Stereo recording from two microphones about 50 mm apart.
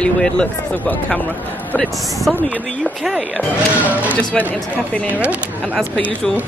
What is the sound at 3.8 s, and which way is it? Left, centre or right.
Speech, right.